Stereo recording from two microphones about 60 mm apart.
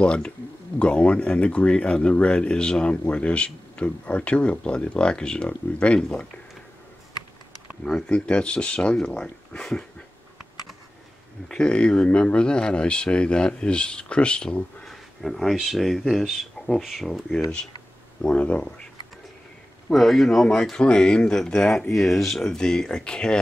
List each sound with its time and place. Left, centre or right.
0.0 s speech: centre
7.8 s speech: centre
11.4 s speech: centre
14.9 s a sound: centre
15.5 s speech: centre
18.3 s speech: left
19.9 s speech: centre